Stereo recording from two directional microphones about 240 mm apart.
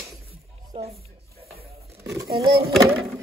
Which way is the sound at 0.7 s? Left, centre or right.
Right.